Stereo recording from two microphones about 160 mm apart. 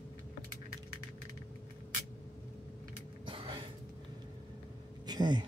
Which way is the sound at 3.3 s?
30° right (ahead or behind).